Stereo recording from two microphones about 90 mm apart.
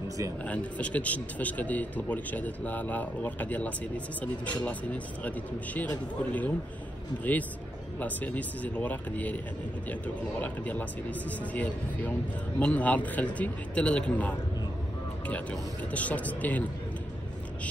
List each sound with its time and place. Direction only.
0.5 s a man's voice: 15° left (ahead or behind)
8.0 s a man's voice: 15° left (ahead or behind)
15.9 s a man's voice: 15° left (ahead or behind)